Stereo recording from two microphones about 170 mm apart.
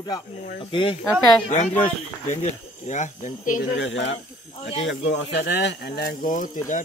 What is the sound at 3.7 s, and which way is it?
Speech, 90° left.